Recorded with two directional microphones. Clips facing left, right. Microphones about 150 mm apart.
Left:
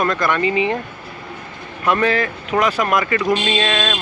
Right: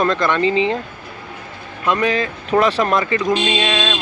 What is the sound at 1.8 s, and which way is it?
Speech, 20° right (ahead or behind).